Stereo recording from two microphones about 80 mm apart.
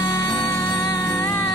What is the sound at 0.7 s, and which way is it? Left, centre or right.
Music, left.